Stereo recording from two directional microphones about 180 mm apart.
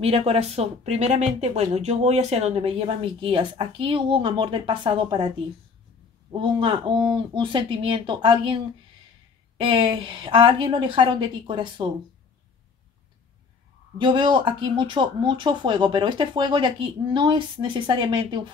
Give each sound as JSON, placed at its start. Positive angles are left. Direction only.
{"t": 0.0, "sound": "speech", "side_deg": -35}
{"t": 6.3, "sound": "speech", "side_deg": -25}
{"t": 9.6, "sound": "speech", "side_deg": -30}
{"t": 13.9, "sound": "speech", "side_deg": -25}